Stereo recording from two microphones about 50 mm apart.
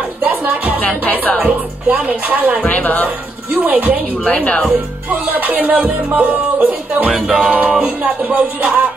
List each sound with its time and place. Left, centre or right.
0.2 s music: right
1.4 s speech: right
2.6 s speech: left
4.3 s speech: left
4.6 s music: right
7.1 s music: centre
7.4 s music: right